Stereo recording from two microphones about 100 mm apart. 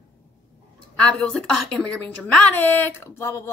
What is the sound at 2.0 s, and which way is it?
Speech, 15° left (ahead or behind).